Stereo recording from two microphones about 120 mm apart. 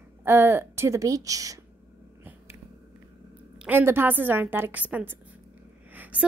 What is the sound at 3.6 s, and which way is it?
A woman's voice, 20° right (ahead or behind).